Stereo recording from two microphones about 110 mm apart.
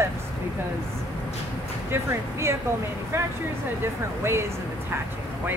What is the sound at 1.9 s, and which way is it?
Speech, 25° right (ahead or behind).